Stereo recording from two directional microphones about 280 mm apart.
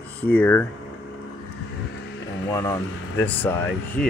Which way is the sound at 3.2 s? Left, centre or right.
Centre.